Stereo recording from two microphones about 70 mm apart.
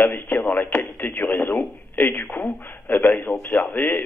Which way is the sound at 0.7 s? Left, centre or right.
Left.